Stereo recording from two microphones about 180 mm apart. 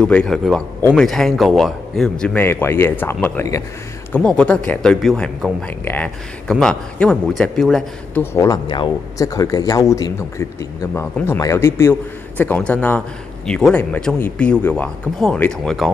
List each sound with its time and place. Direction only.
0.0 s speech: 5° left (ahead or behind)
8.2 s speech: 15° left (ahead or behind)